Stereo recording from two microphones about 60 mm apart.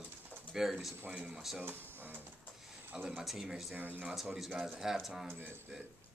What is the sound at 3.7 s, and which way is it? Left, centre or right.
Speech, right.